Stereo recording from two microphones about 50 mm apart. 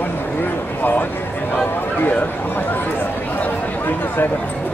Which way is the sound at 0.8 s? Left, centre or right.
Left.